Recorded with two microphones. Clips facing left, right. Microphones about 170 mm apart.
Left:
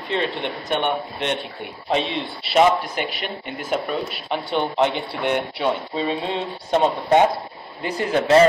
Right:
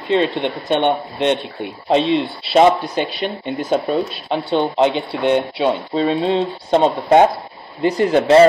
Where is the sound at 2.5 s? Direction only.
30° right (ahead or behind).